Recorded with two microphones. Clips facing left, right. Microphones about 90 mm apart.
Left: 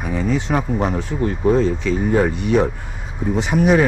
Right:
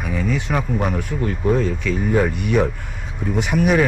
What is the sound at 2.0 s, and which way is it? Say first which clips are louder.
Speech: left 1 dB; 35° left (ahead or behind).